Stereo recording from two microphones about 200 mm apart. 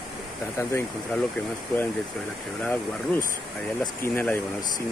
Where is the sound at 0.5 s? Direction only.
10° left (ahead or behind).